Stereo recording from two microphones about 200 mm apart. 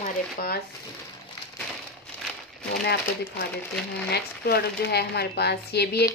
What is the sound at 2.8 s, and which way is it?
A woman's voice, 55° left (ahead or behind).